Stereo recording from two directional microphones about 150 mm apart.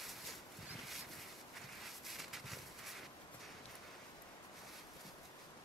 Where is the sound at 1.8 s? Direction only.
Centre (ahead or behind).